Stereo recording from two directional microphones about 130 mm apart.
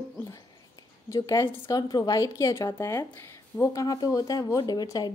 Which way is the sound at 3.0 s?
10° left (ahead or behind).